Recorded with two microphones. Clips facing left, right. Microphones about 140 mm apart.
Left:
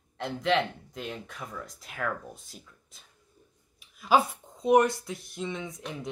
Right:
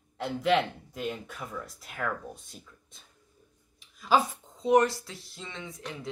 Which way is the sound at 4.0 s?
10° left (ahead or behind).